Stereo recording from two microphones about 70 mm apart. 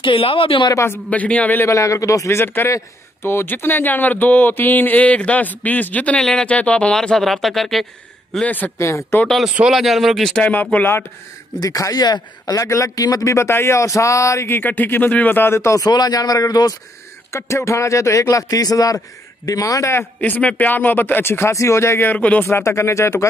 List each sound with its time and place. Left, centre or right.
1.1 s speech: left
1.7 s a man's voice: left
2.4 s speech: left; by 7.8 s centre
8.5 s speech: left
8.7 s a man's voice: left
9.7 s speech: centre
10.4 s speech: left
11.6 s speech: left
12.5 s a man's voice: left
14.6 s speech: left
15.8 s speech: left
17.3 s a man's voice: left
20.2 s speech: left
22.6 s a man's voice: left